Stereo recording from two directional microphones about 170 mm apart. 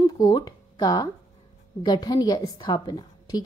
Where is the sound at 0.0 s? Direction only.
25° left (ahead or behind).